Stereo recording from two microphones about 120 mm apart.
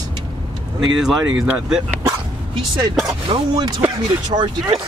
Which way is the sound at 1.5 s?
15° right (ahead or behind).